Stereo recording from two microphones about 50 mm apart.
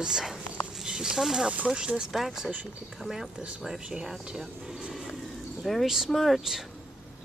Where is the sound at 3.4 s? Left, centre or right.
Right.